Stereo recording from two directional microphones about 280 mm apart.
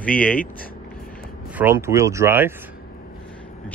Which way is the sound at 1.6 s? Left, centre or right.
Centre.